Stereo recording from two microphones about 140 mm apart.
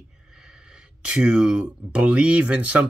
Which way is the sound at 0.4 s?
5° right (ahead or behind).